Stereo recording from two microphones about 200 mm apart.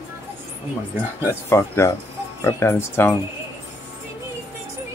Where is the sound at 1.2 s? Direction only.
10° left (ahead or behind).